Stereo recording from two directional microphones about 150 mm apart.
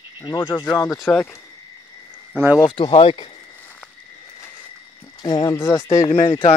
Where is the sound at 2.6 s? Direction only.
35° left (ahead or behind).